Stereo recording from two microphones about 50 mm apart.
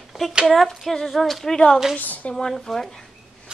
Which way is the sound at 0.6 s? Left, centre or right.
Centre.